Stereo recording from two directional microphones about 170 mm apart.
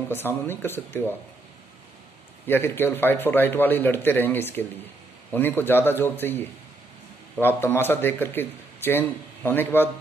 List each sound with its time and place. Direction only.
0.5 s a man's voice: 10° left (ahead or behind)
2.4 s a man's voice: 15° left (ahead or behind)